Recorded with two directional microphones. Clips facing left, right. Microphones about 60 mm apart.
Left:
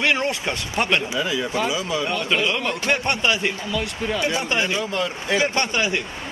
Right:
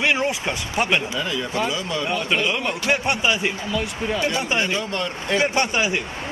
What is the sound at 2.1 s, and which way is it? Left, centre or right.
Speech, centre.